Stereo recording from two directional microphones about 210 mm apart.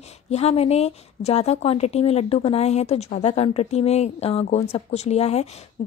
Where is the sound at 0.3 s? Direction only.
30° left (ahead or behind).